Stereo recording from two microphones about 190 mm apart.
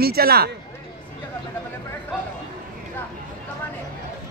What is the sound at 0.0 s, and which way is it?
Speech, 55° right (ahead or behind).